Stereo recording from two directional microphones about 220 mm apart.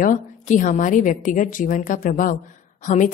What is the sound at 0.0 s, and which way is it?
A woman's voice, 35° left (ahead or behind).